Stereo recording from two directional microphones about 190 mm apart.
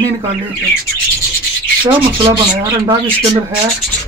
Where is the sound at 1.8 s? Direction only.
25° right (ahead or behind).